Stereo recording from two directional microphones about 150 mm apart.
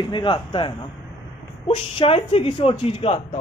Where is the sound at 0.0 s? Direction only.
35° left (ahead or behind).